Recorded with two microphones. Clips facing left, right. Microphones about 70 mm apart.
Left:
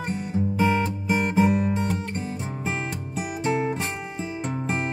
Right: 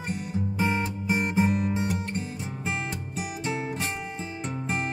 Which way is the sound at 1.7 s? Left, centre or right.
Left.